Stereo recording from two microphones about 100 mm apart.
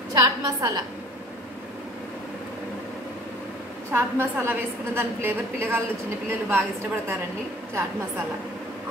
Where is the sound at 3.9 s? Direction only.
25° right (ahead or behind).